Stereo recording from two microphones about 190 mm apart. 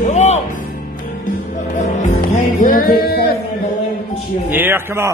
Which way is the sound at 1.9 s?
40° left (ahead or behind).